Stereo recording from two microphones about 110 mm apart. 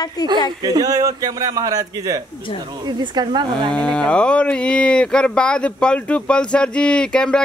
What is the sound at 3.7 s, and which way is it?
Speech, 10° left (ahead or behind).